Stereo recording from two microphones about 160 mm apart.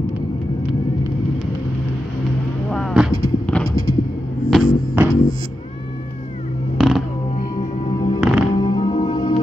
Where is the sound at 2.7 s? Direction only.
5° right (ahead or behind).